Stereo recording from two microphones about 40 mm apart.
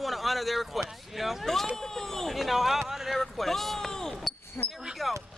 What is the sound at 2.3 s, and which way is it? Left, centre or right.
Speech, centre.